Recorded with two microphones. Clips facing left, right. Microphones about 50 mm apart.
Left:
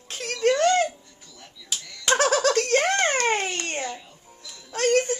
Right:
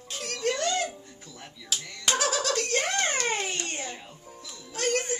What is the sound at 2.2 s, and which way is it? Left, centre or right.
A child's voice, left.